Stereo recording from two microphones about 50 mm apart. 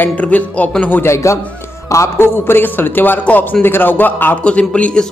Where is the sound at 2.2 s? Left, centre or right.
Left.